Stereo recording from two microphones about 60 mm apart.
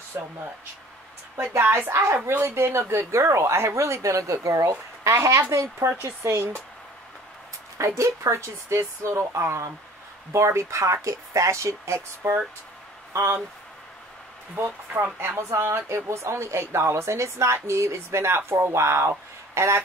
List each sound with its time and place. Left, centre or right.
1.5 s speech: right
7.7 s speech: right
14.5 s speech: right
15.1 s speech: right